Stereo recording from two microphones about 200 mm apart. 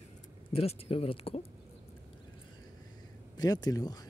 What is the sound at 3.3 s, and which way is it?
Speech, 20° left (ahead or behind).